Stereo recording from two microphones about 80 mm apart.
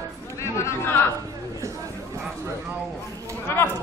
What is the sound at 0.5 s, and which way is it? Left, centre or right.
Speech, left.